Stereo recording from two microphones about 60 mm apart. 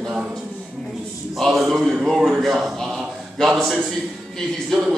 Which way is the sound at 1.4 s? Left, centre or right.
Centre.